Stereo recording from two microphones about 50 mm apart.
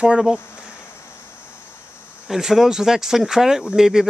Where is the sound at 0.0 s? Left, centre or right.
Centre.